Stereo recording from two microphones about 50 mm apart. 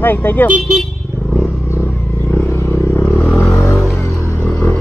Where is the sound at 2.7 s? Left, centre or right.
Left.